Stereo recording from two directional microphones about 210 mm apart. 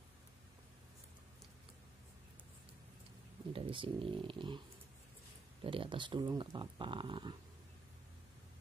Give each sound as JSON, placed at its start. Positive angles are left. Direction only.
{"t": 3.5, "sound": "speech", "side_deg": -25}